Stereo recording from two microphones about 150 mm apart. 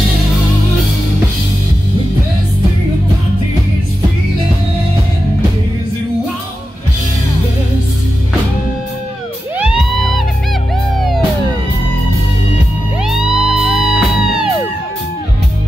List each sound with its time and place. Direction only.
11.0 s music: centre (ahead or behind)
13.0 s music: 5° right (ahead or behind)